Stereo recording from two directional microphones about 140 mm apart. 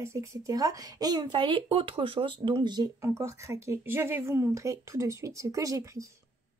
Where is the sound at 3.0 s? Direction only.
20° right (ahead or behind).